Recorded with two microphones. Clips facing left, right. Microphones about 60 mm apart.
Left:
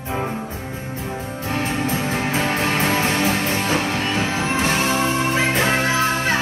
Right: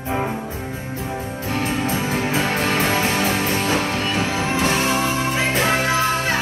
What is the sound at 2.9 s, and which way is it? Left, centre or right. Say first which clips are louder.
Music: even; centre.